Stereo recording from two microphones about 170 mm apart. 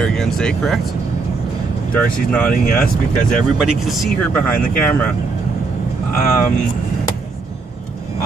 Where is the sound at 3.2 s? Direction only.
50° left (ahead or behind).